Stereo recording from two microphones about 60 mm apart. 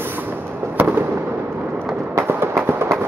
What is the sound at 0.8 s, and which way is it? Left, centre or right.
Fireworks, right.